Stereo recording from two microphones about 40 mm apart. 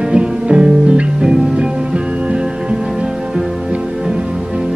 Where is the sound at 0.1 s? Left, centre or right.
Right.